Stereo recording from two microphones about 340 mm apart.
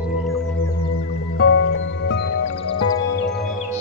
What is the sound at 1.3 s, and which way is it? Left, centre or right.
Music, left.